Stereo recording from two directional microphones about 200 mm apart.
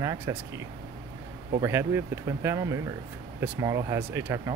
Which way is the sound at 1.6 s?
10° right (ahead or behind).